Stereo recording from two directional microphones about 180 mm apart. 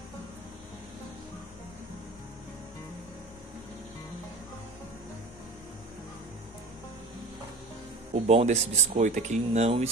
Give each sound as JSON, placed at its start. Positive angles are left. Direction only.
{"t": 8.1, "sound": "speech", "side_deg": -35}